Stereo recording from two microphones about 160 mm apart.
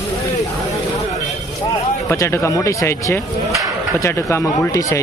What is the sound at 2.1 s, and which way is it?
Speech, 15° left (ahead or behind).